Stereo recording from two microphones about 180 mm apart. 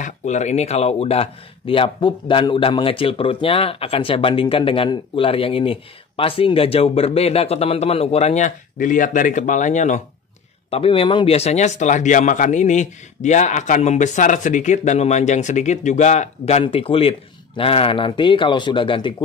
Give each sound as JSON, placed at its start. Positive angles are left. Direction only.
{"t": 0.0, "sound": "speech", "side_deg": 40}
{"t": 10.7, "sound": "speech", "side_deg": 30}